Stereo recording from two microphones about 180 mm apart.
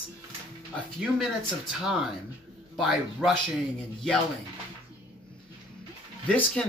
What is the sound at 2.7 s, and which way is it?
Speech, centre (ahead or behind).